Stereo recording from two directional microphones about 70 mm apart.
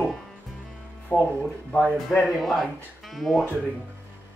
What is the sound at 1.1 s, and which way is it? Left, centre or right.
Speech, left.